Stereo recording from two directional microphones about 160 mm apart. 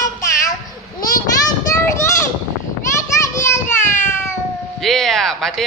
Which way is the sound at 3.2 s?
15° left (ahead or behind).